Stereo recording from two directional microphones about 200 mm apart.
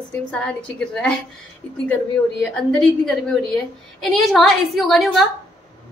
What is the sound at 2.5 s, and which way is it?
A woman's voice, 5° left (ahead or behind).